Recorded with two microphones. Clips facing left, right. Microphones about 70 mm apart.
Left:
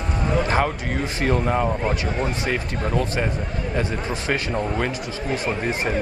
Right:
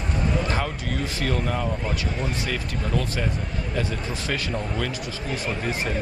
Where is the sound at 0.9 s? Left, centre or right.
Left.